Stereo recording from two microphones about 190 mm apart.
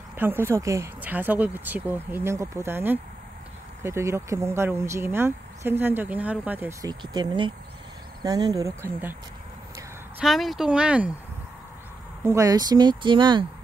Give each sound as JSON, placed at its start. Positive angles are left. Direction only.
{"t": 0.1, "sound": "speech", "side_deg": -10}
{"t": 6.9, "sound": "speech", "side_deg": -25}
{"t": 10.2, "sound": "speech", "side_deg": 0}
{"t": 12.2, "sound": "speech", "side_deg": -15}